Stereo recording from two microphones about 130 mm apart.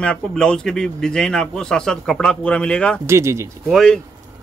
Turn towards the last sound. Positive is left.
turn(degrees=5)  # may be behind; listen again after turning